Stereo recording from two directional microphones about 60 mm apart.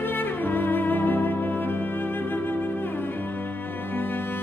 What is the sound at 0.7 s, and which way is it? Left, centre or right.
Music, left.